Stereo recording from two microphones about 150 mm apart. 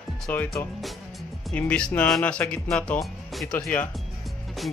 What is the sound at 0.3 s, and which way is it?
Speech, 15° left (ahead or behind).